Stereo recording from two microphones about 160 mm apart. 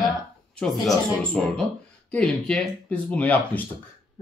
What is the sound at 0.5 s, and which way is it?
Speech, 5° left (ahead or behind).